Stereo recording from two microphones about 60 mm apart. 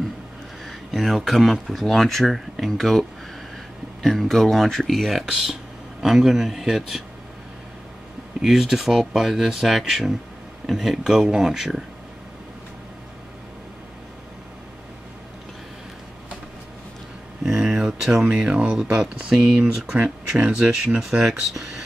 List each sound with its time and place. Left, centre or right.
0.7 s speech: centre
8.5 s speech: centre
17.5 s a sound: centre
18.3 s speech: centre
19.6 s speech: centre
20.4 s speech: centre